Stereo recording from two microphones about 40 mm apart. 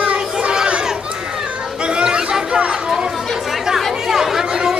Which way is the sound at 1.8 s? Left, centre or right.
Right.